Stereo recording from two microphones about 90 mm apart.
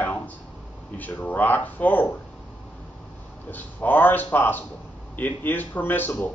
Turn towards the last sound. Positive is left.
turn(degrees=20)  # may be behind; listen again after turning